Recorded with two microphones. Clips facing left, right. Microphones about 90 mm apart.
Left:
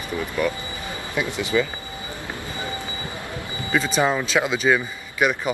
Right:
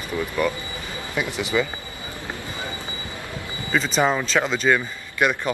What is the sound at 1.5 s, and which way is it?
Speech, 5° right (ahead or behind).